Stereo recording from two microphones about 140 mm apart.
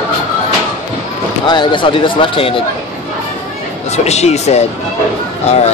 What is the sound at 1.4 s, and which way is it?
Speech, 35° left (ahead or behind).